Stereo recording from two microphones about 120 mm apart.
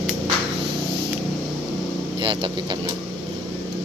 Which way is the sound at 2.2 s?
40° right (ahead or behind).